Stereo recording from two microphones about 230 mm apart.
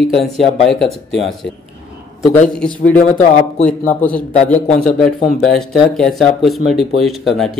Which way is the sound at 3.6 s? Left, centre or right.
Centre.